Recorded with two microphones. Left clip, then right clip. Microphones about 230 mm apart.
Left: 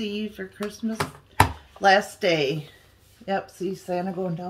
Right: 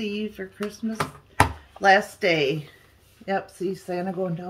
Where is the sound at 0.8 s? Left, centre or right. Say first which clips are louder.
Even; centre.